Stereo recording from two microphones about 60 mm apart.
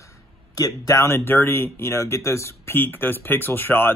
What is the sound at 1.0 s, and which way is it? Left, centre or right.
Speech, left.